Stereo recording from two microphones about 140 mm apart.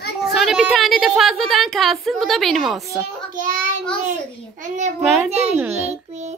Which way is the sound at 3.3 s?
75° right (ahead or behind).